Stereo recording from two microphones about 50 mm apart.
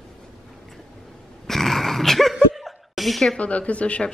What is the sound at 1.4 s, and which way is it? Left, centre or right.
Dog, centre.